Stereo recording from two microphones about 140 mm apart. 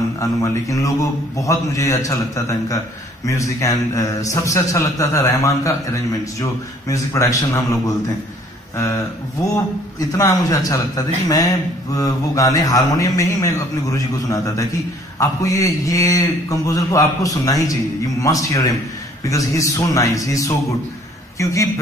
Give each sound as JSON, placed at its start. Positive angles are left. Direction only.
{"t": 0.2, "sound": "a man's voice", "side_deg": 25}
{"t": 8.7, "sound": "a man's voice", "side_deg": 20}